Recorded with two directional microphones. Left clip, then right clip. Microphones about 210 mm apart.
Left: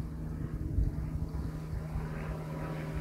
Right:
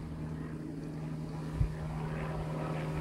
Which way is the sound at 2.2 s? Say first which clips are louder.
Right 3 dB; 40° right (ahead or behind).